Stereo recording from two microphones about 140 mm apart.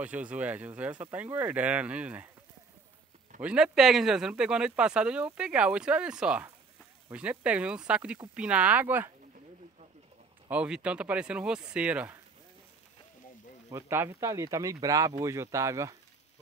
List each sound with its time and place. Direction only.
0.0 s speech: 10° right (ahead or behind)
3.3 s speech: 5° right (ahead or behind)
10.5 s speech: 10° right (ahead or behind)
13.7 s speech: 15° right (ahead or behind)